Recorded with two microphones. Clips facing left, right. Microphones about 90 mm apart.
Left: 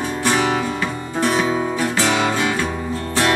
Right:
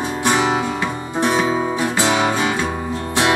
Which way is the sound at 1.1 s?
20° right (ahead or behind).